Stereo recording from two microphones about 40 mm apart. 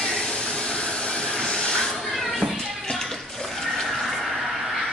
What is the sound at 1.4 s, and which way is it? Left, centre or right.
Hiss, left.